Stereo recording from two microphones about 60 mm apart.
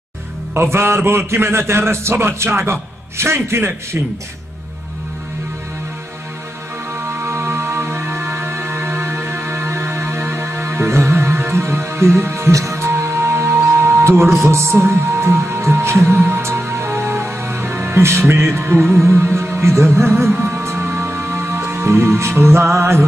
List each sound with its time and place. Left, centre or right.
0.6 s a man's voice: right
7.2 s music: right
12.5 s speech: right
12.9 s music: right
19.0 s a man's voice: right
20.8 s music: right
22.8 s a man's voice: right